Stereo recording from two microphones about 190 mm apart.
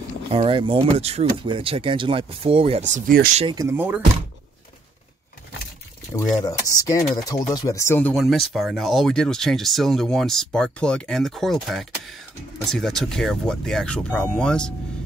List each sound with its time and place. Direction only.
0.3 s speech: 30° right (ahead or behind)
2.9 s speech: 50° right (ahead or behind)
3.5 s speech: 15° right (ahead or behind)
6.4 s speech: 20° left (ahead or behind)
8.2 s speech: centre (ahead or behind)